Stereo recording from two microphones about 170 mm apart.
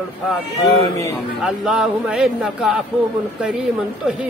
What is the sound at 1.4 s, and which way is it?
Speech, centre (ahead or behind).